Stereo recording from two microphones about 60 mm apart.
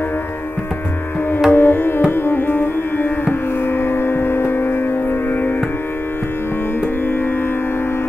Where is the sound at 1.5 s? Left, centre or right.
Left.